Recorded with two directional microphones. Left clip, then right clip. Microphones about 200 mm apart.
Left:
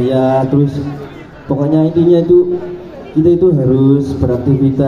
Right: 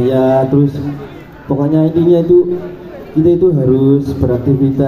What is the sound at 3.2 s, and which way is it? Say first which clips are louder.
Mantra: even; 20° left (ahead or behind).